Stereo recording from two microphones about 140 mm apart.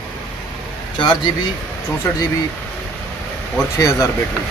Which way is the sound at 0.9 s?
30° left (ahead or behind).